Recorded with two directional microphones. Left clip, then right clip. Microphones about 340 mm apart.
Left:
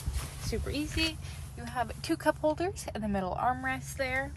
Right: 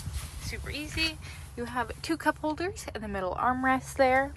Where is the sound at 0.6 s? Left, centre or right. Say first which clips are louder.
Right 2 dB; centre.